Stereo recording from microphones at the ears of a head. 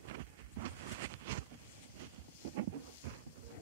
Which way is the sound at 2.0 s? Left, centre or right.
Right.